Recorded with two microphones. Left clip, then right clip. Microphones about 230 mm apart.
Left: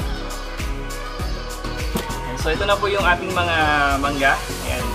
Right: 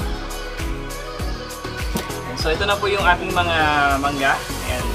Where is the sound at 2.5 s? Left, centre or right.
Centre.